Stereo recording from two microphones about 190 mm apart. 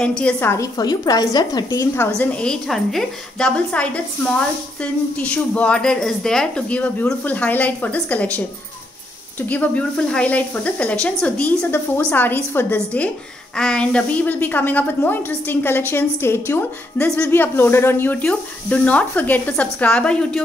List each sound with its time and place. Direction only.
0.0 s speech: 5° left (ahead or behind)
9.5 s speech: 5° left (ahead or behind)